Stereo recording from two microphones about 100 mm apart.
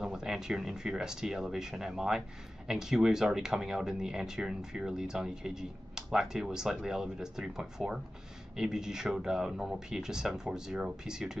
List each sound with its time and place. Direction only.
0.0 s speech: 5° right (ahead or behind)